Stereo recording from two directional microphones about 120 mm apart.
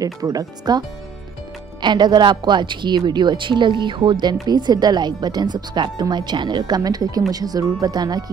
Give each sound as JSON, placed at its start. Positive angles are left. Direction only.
{"t": 0.0, "sound": "a woman's voice", "side_deg": -30}